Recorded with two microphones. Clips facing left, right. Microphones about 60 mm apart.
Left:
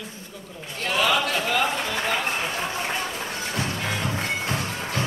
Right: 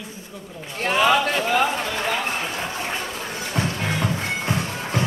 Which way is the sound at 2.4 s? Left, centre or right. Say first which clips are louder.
Even; centre.